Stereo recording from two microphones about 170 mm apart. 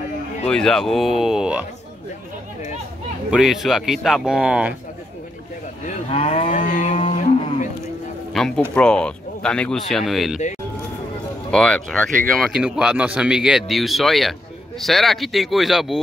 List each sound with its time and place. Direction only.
0.5 s speech: 5° left (ahead or behind)
3.3 s speech: 5° right (ahead or behind)
5.9 s moo: 35° left (ahead or behind)
6.6 s a sound: 50° left (ahead or behind)
7.0 s a sound: 35° left (ahead or behind)
8.3 s speech: 5° left (ahead or behind)
11.5 s speech: 5° left (ahead or behind)